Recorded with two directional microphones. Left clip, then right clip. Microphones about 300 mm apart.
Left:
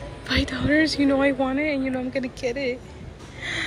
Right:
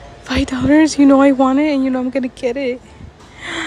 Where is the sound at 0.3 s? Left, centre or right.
Centre.